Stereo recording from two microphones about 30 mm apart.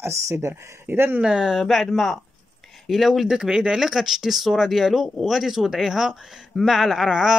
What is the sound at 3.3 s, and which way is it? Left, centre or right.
Speech, right.